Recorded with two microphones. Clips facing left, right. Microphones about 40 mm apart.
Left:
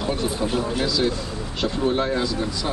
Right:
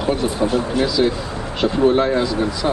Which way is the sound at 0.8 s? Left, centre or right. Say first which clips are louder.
Right 5 dB; centre.